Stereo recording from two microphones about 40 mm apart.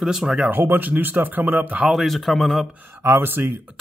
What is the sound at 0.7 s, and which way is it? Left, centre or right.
Speech, right.